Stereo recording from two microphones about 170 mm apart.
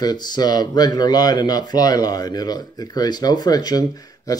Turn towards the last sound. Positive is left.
turn(degrees=20)  # may be behind; listen again after turning